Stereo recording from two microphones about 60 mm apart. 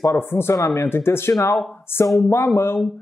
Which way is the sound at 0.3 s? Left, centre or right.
Left.